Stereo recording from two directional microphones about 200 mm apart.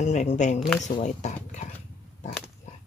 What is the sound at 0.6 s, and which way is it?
Speech, centre (ahead or behind).